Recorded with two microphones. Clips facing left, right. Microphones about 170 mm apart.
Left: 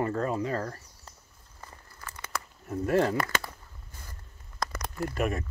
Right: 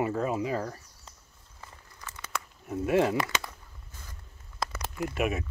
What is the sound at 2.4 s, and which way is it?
Speech, 5° right (ahead or behind).